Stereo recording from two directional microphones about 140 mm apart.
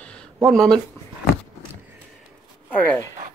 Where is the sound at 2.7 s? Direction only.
10° left (ahead or behind).